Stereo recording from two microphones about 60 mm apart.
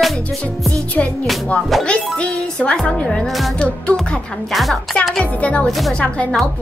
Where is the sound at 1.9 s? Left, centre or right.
Centre.